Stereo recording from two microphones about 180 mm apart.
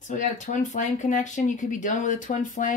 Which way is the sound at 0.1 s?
45° left (ahead or behind).